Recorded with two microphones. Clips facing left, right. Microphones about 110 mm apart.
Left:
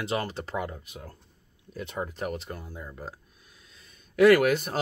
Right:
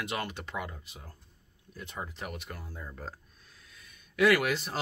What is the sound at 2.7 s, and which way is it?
Speech, 10° left (ahead or behind).